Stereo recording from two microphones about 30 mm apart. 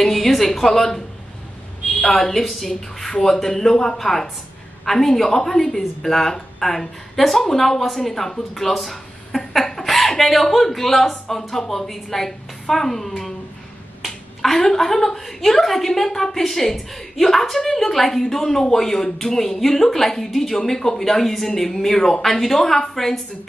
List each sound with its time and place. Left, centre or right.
0.0 s a woman's voice: centre
2.1 s a woman's voice: centre
3.0 s a sound: centre
3.4 s a woman's voice: centre
14.0 s finger snapping: centre
14.6 s a woman's voice: centre